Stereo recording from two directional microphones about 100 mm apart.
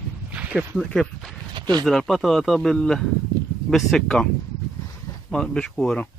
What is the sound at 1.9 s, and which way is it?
Speech, centre (ahead or behind).